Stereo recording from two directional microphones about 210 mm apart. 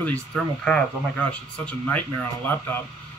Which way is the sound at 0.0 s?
5° left (ahead or behind).